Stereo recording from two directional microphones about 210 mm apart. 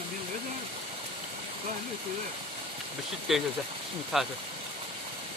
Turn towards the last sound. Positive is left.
turn(degrees=0)  # may be behind; listen again after turning